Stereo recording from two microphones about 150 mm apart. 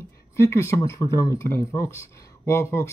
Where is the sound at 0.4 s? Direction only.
20° left (ahead or behind).